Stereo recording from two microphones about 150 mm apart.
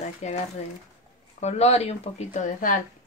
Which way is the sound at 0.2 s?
50° left (ahead or behind).